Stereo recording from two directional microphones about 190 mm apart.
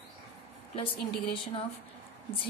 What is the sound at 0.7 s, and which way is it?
Speech, 30° left (ahead or behind).